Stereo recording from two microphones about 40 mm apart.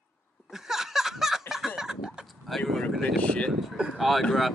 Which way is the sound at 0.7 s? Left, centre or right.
Centre.